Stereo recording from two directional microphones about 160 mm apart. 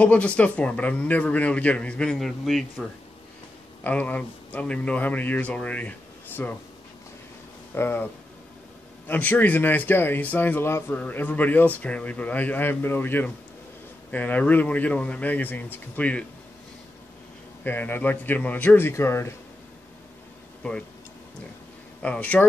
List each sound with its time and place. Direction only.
0.0 s speech: 10° left (ahead or behind)
3.8 s speech: 10° left (ahead or behind)
7.7 s speech: 15° left (ahead or behind)
17.6 s speech: 10° left (ahead or behind)
22.0 s speech: 10° left (ahead or behind)